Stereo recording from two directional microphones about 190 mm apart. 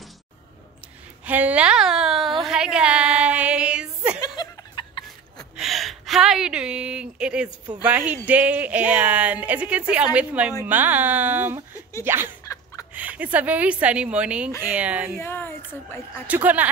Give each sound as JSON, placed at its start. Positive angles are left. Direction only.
{"t": 1.2, "sound": "a sound", "side_deg": -10}
{"t": 4.2, "sound": "chuckle", "side_deg": 20}
{"t": 5.6, "sound": "a woman's voice", "side_deg": 0}
{"t": 7.4, "sound": "speech", "side_deg": -20}
{"t": 7.8, "sound": "speech", "side_deg": -10}
{"t": 15.1, "sound": "a woman's voice", "side_deg": 10}
{"t": 16.3, "sound": "speech", "side_deg": -10}